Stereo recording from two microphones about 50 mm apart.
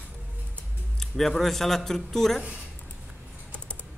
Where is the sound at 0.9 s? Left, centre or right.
Centre.